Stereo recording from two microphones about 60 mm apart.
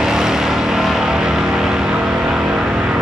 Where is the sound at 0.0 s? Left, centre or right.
Centre.